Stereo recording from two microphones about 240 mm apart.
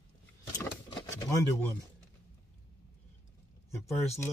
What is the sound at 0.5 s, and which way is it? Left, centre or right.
Vehicle, centre.